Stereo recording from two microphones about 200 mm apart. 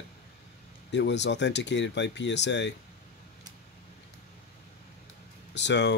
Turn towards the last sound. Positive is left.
turn(degrees=60)  # may be behind; listen again after turning